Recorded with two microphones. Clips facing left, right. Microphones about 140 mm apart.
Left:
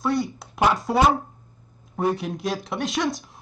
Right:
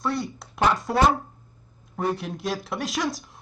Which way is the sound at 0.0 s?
Centre (ahead or behind).